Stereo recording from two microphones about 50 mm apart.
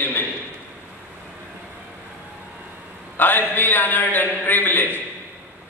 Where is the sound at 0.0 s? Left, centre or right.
Left.